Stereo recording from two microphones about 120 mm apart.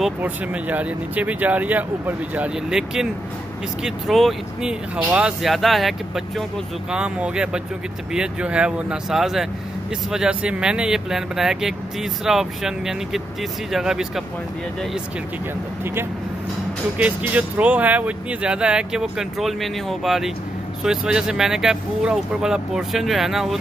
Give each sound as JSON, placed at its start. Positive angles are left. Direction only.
{"t": 0.2, "sound": "speech", "side_deg": -15}
{"t": 15.8, "sound": "speech", "side_deg": -20}